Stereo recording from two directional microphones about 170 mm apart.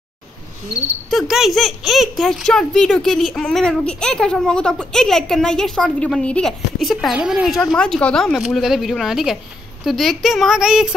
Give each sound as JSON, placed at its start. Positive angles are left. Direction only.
{"t": 1.1, "sound": "speech", "side_deg": 0}